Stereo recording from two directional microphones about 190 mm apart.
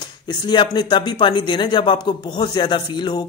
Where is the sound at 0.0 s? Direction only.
20° left (ahead or behind).